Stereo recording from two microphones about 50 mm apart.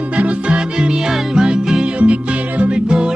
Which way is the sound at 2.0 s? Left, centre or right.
Right.